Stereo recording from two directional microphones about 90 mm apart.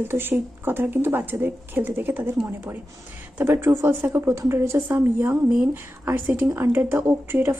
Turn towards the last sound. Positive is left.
turn(degrees=-25)  # may be behind; listen again after turning